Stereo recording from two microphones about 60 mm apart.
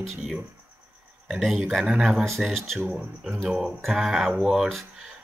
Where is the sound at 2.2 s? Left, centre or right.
Centre.